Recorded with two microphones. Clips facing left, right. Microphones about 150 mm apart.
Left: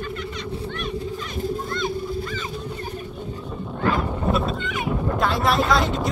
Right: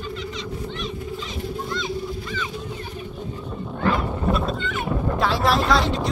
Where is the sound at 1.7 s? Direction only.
50° left (ahead or behind).